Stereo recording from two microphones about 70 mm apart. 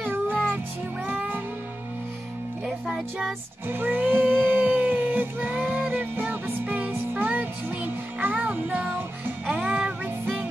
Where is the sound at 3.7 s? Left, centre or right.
Right.